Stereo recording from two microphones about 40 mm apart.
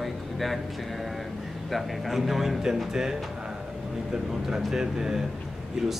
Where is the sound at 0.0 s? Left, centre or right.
Centre.